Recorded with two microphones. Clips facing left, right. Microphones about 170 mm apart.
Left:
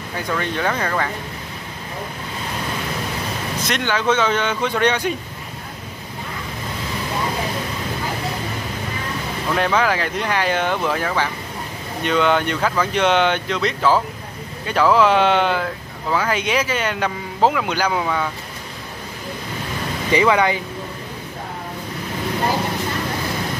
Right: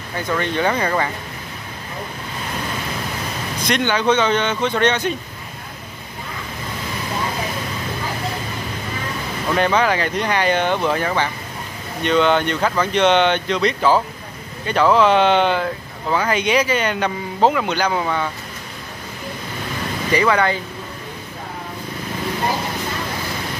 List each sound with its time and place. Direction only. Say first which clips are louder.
0.3 s speech: right 3 dB; centre (ahead or behind)
3.6 s speech: right 3 dB; centre (ahead or behind)
9.6 s speech: right 2 dB; centre (ahead or behind)
20.1 s speech: left 1 dB; 20° left (ahead or behind)